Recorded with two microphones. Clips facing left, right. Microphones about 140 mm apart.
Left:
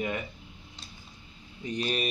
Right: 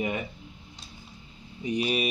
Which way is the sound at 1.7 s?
10° right (ahead or behind).